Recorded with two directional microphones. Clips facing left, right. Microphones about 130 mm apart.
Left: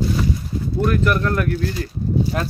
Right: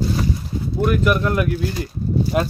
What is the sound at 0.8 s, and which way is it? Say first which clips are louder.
Speech: right 1 dB; 10° right (ahead or behind).